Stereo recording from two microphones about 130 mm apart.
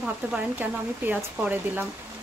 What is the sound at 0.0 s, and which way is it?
Speech, 10° right (ahead or behind).